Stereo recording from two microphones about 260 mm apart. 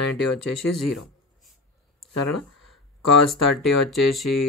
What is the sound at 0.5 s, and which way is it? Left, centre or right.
Speech, left.